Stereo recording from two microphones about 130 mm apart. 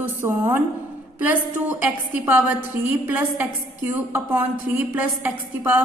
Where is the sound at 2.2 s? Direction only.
15° right (ahead or behind).